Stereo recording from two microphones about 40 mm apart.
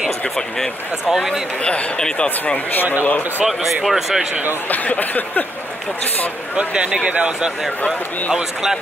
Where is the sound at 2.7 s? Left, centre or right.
Left.